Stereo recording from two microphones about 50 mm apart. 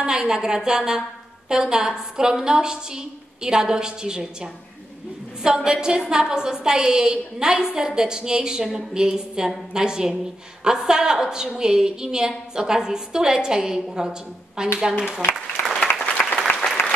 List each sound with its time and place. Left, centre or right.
0.0 s a woman's voice: centre
15.3 s applause: centre
16.2 s applause: left